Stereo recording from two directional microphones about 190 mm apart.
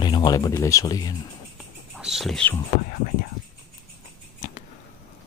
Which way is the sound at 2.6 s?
50° left (ahead or behind).